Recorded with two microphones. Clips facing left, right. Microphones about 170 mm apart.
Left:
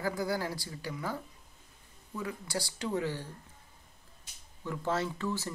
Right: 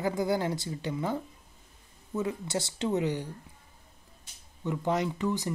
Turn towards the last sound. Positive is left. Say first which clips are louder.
# right 5 dB
turn(degrees=-15)  # may be behind; listen again after turning